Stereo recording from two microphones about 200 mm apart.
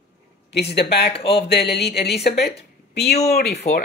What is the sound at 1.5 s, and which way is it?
Speech, 55° left (ahead or behind).